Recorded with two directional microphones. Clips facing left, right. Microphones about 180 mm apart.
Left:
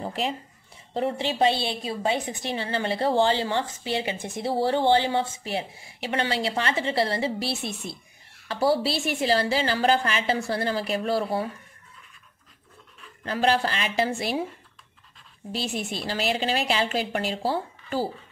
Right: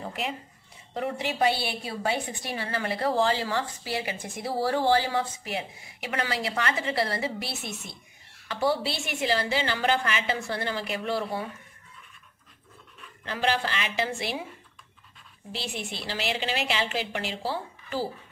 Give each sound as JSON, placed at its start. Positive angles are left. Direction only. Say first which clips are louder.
{"t": 0.0, "sound": "a woman's voice", "louder": "left 4 dB", "side_deg": 30}
{"t": 13.2, "sound": "a woman's voice", "louder": "left 4 dB", "side_deg": 40}
{"t": 15.5, "sound": "a woman's voice", "louder": "left 5 dB", "side_deg": 45}